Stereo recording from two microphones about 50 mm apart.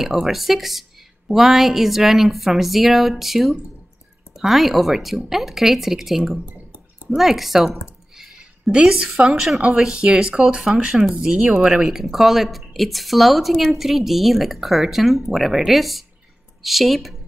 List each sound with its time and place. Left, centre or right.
0.0 s speech: centre
8.4 s speech: centre